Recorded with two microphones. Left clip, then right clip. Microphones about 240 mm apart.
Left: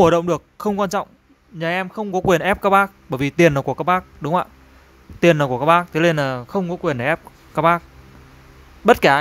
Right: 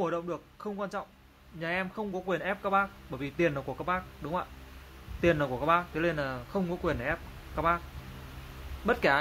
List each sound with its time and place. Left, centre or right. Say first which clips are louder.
0.0 s speech: left 17 dB; left
8.8 s speech: left 13 dB; left